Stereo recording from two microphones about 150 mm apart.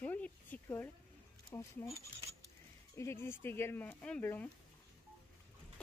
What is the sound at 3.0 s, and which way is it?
Speech, 15° left (ahead or behind).